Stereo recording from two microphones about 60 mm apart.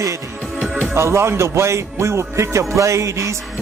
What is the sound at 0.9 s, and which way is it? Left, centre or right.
Speech, right.